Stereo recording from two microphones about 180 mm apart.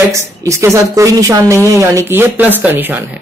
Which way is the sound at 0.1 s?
15° right (ahead or behind).